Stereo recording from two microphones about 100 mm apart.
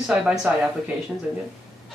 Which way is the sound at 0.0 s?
5° right (ahead or behind).